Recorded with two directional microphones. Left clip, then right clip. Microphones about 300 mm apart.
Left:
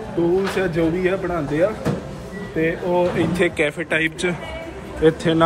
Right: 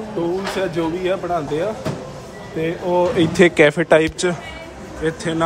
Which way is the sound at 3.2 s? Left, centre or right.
Right.